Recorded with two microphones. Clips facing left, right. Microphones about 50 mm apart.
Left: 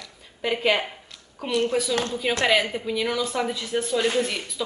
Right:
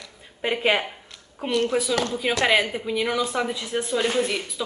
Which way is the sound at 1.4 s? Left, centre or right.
Right.